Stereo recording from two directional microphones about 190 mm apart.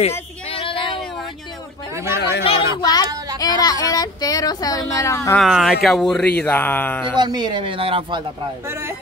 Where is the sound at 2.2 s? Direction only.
60° left (ahead or behind).